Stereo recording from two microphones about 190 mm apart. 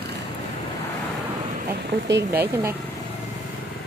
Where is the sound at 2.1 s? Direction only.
55° right (ahead or behind).